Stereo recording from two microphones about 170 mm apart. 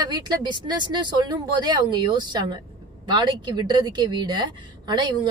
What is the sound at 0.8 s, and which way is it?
Speech, 25° right (ahead or behind).